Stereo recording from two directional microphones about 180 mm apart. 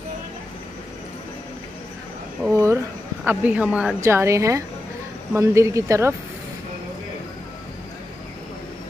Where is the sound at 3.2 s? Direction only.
10° right (ahead or behind).